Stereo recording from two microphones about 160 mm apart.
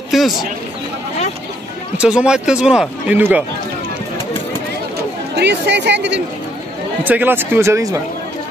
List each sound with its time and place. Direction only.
0.1 s a man's voice: centre (ahead or behind)
2.0 s speech: 5° right (ahead or behind)
5.3 s speech: 90° right
7.1 s speech: 10° right (ahead or behind)